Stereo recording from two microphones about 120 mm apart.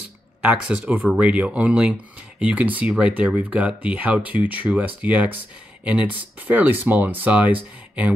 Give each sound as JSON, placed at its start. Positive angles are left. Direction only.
{"t": 0.4, "sound": "speech", "side_deg": -10}